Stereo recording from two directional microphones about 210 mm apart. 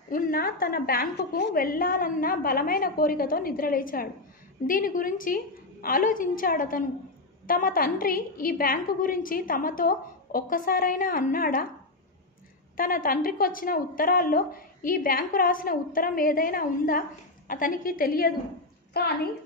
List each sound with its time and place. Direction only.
0.1 s a woman's voice: 45° left (ahead or behind)
12.7 s a woman's voice: 40° left (ahead or behind)